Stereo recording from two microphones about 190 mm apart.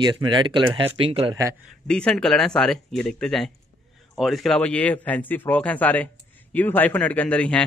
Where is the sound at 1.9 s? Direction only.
5° left (ahead or behind).